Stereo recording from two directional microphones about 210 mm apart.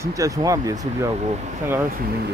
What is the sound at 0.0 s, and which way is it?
Speech, 15° right (ahead or behind).